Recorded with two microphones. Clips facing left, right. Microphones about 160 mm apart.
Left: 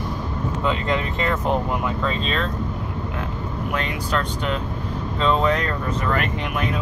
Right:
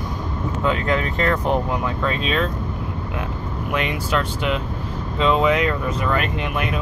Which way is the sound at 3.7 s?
5° right (ahead or behind).